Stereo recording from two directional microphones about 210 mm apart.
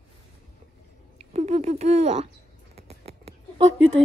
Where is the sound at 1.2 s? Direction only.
30° right (ahead or behind).